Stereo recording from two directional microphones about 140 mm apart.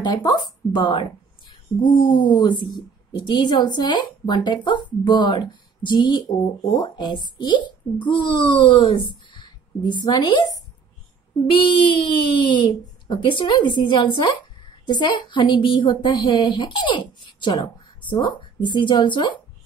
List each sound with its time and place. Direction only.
0.0 s a woman's voice: 30° left (ahead or behind)
11.5 s a woman's voice: 35° left (ahead or behind)